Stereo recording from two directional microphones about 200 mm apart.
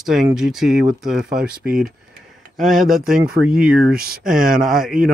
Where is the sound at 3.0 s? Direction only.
45° right (ahead or behind).